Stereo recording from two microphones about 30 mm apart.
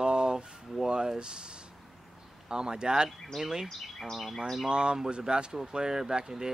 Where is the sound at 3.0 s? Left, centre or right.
Centre.